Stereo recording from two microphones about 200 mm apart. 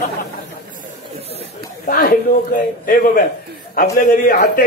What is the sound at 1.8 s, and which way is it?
A man's voice, 45° left (ahead or behind).